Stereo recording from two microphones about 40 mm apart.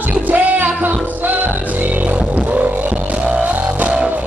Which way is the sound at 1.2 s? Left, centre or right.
Right.